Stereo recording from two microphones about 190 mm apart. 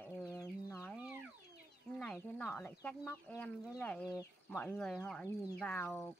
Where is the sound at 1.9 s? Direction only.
5° left (ahead or behind).